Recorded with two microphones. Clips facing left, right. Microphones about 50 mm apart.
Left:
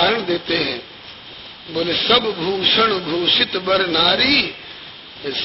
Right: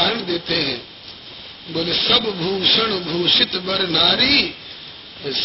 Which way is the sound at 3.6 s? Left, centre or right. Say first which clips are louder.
Left 5 dB; left.